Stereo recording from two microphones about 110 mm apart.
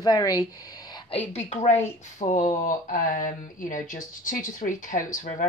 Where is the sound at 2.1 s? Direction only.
90° left.